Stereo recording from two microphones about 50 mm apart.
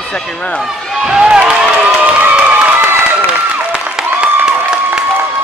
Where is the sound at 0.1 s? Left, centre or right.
Centre.